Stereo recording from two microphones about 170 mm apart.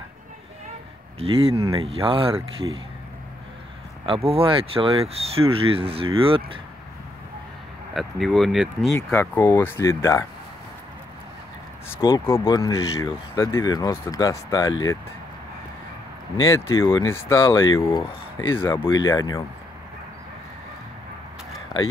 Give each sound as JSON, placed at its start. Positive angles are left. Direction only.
{"t": 1.2, "sound": "speech", "side_deg": -35}
{"t": 4.0, "sound": "speech", "side_deg": -35}
{"t": 7.9, "sound": "speech", "side_deg": 0}
{"t": 8.9, "sound": "speech", "side_deg": 15}
{"t": 12.0, "sound": "speech", "side_deg": 15}
{"t": 16.4, "sound": "speech", "side_deg": 15}
{"t": 18.8, "sound": "speech", "side_deg": 25}